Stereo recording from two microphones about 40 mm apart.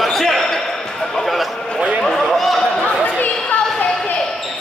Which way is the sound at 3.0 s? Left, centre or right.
Left.